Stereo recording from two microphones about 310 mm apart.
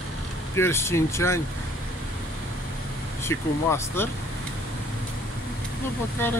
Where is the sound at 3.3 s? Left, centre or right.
Centre.